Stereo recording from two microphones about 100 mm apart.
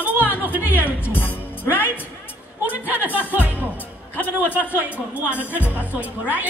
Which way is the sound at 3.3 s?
15° right (ahead or behind).